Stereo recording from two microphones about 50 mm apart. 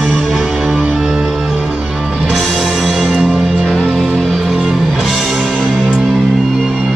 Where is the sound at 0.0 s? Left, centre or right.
Centre.